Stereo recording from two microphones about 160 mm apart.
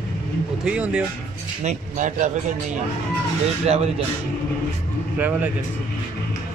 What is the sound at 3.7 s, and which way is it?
Speech, 40° right (ahead or behind).